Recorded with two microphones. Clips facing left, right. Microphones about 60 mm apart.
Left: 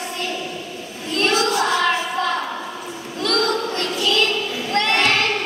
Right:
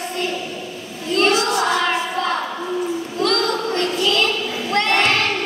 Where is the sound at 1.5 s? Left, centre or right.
Right.